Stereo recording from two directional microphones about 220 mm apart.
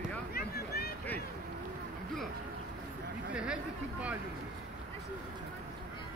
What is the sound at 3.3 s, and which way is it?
Chatter, 5° right (ahead or behind).